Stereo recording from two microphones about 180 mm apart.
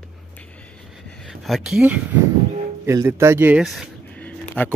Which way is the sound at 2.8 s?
15° right (ahead or behind).